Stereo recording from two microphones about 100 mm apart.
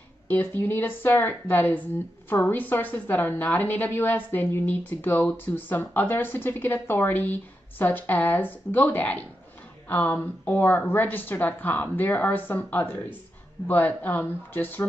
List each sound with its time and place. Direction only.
0.3 s a woman's voice: 20° left (ahead or behind)